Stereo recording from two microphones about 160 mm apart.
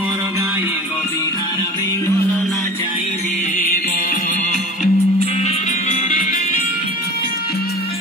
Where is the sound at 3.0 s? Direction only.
45° left (ahead or behind).